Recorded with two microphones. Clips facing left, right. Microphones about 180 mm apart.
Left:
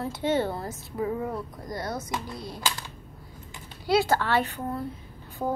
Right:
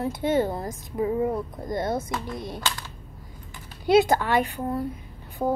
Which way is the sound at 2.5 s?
15° left (ahead or behind).